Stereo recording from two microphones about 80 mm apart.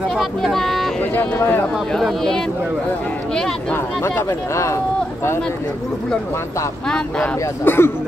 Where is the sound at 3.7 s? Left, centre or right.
Left.